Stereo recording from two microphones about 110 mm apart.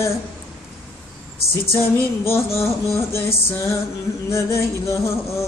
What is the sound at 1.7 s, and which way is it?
Music, 20° left (ahead or behind).